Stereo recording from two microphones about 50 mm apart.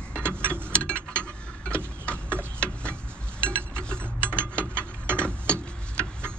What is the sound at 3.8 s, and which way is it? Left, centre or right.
Ratchet, left.